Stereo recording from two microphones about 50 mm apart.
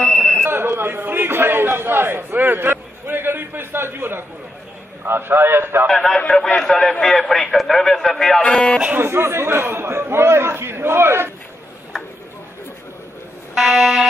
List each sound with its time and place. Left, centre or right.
0.1 s a sound: centre
0.4 s a sound: right
5.0 s a man's voice: right
5.9 s a man's voice: centre
8.4 s speech: centre
8.9 s a man's voice: right
13.6 s a man's voice: centre